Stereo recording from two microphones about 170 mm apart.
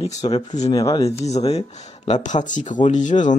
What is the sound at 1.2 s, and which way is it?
Speech, 40° left (ahead or behind).